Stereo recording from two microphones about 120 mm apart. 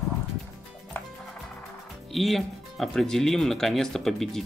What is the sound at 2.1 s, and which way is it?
Speech, centre (ahead or behind).